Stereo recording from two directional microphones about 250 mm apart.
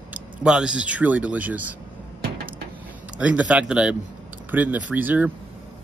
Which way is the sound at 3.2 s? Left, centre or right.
Centre.